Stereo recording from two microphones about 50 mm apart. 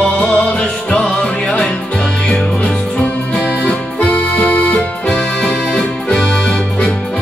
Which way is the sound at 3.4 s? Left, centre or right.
Left.